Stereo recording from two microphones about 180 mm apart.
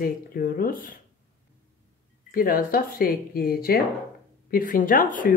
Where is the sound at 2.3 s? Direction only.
50° left (ahead or behind).